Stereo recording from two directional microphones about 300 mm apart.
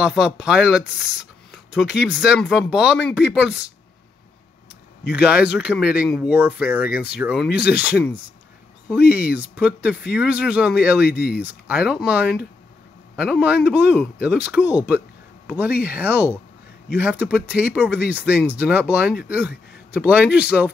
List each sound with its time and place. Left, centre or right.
0.0 s speech: centre
5.2 s speech: centre
11.1 s speech: left
11.3 s a man's voice: centre